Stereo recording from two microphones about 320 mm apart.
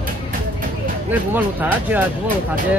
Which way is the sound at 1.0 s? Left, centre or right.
Centre.